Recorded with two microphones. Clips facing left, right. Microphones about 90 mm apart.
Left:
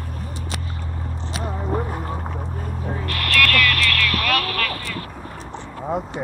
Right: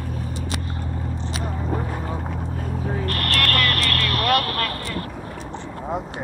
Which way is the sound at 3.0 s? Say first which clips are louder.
Left 5 dB; 40° right (ahead or behind).